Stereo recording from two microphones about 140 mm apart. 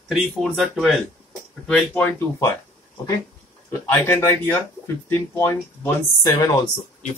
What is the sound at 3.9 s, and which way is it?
Speech, 15° left (ahead or behind).